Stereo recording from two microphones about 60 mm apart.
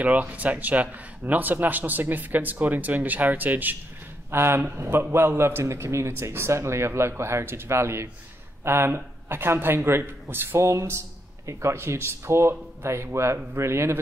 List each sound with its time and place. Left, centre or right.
0.0 s speech: right
4.3 s a man's voice: right